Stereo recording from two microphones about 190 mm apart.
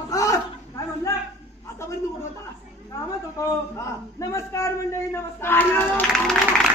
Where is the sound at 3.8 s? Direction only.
15° left (ahead or behind).